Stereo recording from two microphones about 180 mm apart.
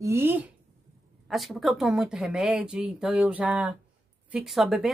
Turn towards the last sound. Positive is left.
turn(degrees=0)  # may be behind; listen again after turning